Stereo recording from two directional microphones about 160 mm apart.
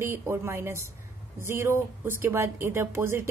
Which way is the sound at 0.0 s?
15° right (ahead or behind).